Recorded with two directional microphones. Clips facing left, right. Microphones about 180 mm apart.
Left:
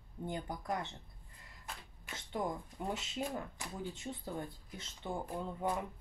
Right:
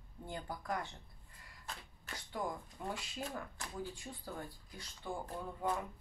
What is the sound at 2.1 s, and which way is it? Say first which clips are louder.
Speech: left 3 dB; 20° left (ahead or behind).